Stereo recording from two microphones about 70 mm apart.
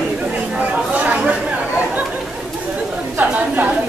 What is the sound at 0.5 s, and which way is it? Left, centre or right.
Chatter, right.